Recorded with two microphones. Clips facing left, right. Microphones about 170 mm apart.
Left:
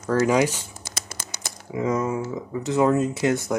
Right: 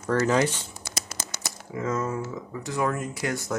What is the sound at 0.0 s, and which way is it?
Speech, 10° left (ahead or behind).